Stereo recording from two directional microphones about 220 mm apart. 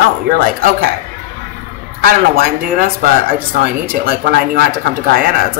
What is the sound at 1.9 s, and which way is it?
Speech, 40° right (ahead or behind).